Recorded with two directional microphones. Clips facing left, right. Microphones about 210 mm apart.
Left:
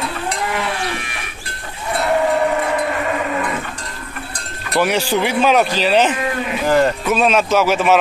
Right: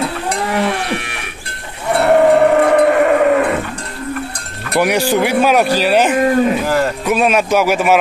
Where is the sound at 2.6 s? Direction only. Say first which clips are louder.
Right 9 dB; 60° right (ahead or behind).